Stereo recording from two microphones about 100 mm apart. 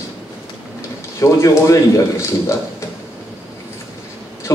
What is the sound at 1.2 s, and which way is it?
A man's voice, 30° left (ahead or behind).